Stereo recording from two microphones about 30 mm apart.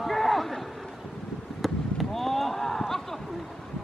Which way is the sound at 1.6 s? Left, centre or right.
Centre.